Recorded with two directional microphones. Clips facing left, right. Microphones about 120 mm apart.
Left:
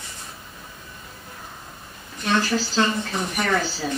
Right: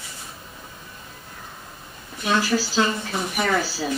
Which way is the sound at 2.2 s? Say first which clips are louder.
Right 1 dB; 10° right (ahead or behind).